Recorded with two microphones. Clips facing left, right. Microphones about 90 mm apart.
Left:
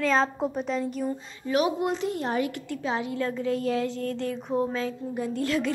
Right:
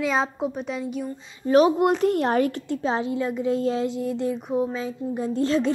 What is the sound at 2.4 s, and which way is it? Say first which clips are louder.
Speech: right 6 dB; 35° right (ahead or behind).